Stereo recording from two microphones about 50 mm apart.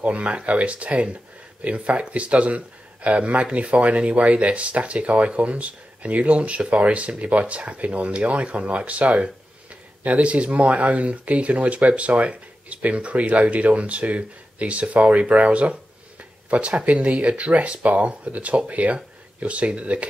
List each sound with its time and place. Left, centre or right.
0.0 s speech: right